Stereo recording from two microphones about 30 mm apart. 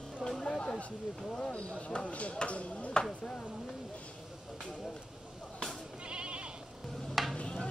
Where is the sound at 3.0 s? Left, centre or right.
Left.